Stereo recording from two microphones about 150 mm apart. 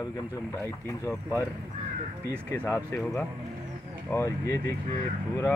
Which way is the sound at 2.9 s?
5° left (ahead or behind).